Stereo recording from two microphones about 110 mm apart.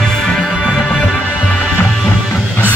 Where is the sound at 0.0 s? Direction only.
5° left (ahead or behind).